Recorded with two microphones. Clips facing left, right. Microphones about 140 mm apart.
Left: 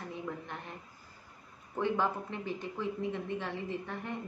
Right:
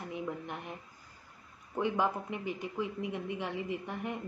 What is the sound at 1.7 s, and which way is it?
Speech, 15° right (ahead or behind).